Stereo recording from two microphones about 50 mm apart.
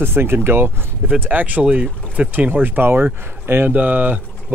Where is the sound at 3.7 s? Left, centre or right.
Right.